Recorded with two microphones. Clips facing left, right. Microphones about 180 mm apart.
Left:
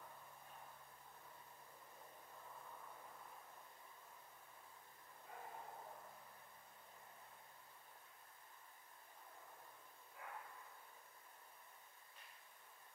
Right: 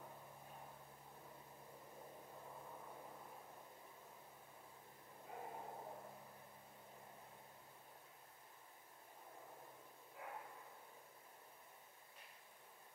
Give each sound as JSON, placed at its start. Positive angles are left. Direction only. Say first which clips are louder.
{"t": 2.3, "sound": "vehicle", "louder": "right 1 dB", "side_deg": -20}
{"t": 5.3, "sound": "bow-wow", "louder": "right 4 dB", "side_deg": -15}
{"t": 10.1, "sound": "a sound", "louder": "right 2 dB", "side_deg": -15}